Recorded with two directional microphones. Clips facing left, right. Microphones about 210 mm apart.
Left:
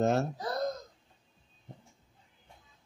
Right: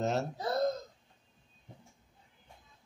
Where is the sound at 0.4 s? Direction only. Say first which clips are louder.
Right 2 dB; 25° right (ahead or behind).